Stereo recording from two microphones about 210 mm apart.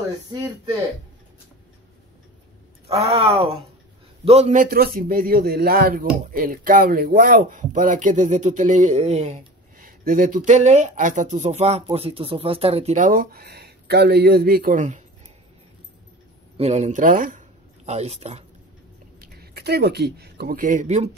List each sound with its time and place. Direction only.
2.9 s a man's voice: 30° right (ahead or behind)
16.5 s a man's voice: 30° right (ahead or behind)
19.2 s speech: 50° right (ahead or behind)